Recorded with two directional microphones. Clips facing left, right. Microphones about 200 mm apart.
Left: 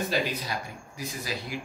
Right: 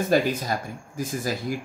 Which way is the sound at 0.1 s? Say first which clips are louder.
Right 7 dB; 50° right (ahead or behind).